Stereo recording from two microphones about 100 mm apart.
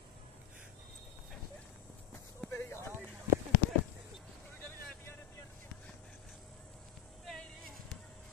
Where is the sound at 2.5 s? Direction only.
25° left (ahead or behind).